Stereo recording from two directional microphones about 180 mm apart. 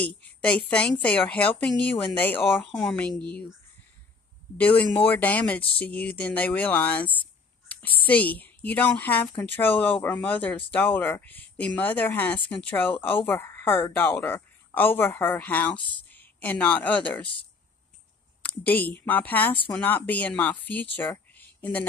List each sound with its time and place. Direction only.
0.0 s speech: 5° left (ahead or behind)
4.6 s speech: 10° left (ahead or behind)
18.4 s speech: 10° left (ahead or behind)